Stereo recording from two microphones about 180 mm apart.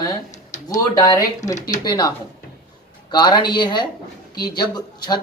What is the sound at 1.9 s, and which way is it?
Speech, 25° left (ahead or behind).